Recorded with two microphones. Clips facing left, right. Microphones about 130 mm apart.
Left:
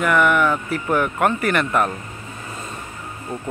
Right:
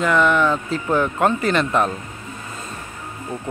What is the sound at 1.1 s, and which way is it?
Speech, 20° right (ahead or behind).